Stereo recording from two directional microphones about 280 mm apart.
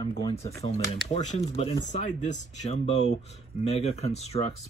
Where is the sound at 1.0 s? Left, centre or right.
Left.